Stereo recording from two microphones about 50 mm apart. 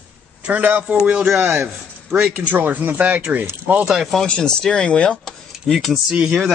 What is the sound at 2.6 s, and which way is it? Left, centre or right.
Speech, right.